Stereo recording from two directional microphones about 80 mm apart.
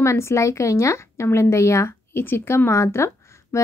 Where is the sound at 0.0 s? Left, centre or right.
Left.